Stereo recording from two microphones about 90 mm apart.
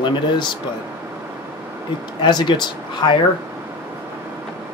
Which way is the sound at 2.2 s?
60° left (ahead or behind).